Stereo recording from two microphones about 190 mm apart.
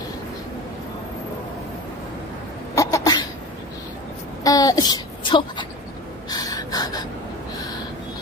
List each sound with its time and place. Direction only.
2.7 s cough: 15° left (ahead or behind)
4.4 s a sound: 20° left (ahead or behind)
6.3 s gasp: 20° left (ahead or behind)